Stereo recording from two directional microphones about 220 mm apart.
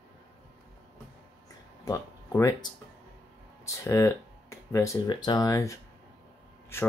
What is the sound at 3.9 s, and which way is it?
Speech, 15° left (ahead or behind).